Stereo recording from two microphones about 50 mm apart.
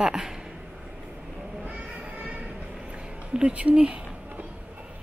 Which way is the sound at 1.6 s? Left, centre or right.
Right.